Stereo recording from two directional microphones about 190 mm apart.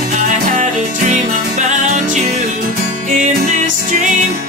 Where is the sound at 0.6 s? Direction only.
40° right (ahead or behind).